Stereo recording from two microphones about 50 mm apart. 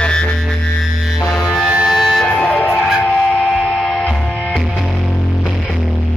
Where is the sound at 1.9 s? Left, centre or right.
Centre.